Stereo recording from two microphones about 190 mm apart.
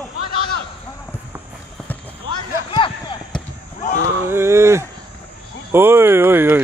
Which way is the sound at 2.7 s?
25° left (ahead or behind).